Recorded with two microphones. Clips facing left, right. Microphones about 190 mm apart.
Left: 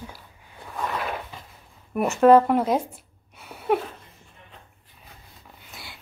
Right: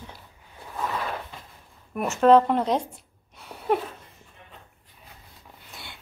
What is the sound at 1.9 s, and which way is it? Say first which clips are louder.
Speech: left 2 dB; 5° left (ahead or behind).